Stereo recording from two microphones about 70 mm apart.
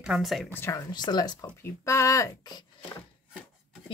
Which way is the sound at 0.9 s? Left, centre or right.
Left.